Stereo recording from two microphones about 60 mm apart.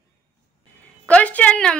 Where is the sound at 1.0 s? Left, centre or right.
Left.